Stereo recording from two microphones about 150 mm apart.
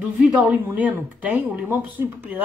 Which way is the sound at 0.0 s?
10° right (ahead or behind).